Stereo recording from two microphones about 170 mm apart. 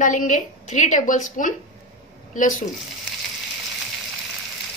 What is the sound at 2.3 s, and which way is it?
Speech, 50° left (ahead or behind).